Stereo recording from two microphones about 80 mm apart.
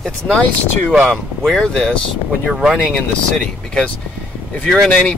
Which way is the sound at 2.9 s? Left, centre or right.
Centre.